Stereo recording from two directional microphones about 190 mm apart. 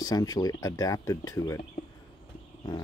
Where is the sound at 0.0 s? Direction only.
20° left (ahead or behind).